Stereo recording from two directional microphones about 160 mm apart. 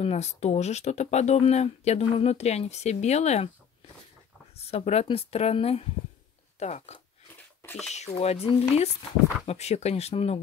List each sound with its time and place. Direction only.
0.0 s speech: 40° left (ahead or behind)
4.6 s speech: 40° left (ahead or behind)